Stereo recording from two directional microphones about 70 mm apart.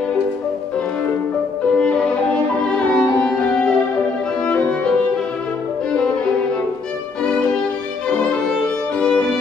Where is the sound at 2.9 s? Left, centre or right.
Centre.